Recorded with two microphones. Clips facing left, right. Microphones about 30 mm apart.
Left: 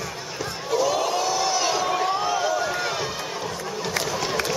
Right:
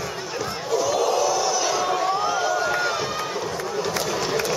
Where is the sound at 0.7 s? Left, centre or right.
Centre.